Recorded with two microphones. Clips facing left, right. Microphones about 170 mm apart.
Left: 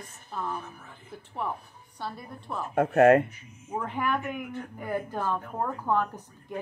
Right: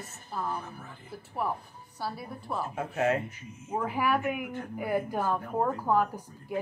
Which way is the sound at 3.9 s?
5° right (ahead or behind).